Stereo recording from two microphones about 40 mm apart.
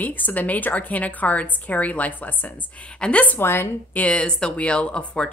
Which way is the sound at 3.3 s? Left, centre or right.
Left.